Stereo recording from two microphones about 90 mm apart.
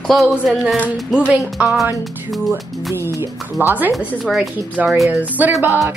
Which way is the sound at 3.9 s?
Centre (ahead or behind).